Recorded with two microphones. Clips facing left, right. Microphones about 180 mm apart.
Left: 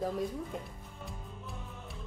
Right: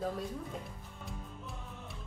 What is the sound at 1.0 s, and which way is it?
Music, centre (ahead or behind).